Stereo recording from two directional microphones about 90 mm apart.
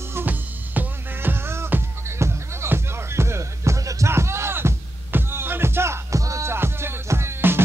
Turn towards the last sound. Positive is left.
turn(degrees=-25)  # may be behind; listen again after turning